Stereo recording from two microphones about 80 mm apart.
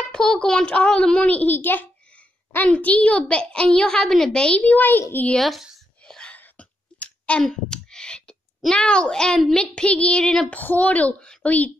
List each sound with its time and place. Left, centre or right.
0.0 s a woman's voice: centre
4.6 s a woman's voice: left
5.4 s a woman's voice: centre
6.0 s a sound: centre
7.4 s a child's voice: centre
10.5 s a woman's voice: left